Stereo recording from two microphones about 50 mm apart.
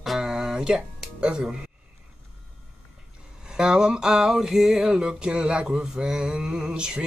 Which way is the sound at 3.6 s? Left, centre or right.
Centre.